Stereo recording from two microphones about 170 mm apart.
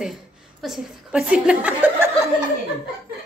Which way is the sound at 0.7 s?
5° right (ahead or behind).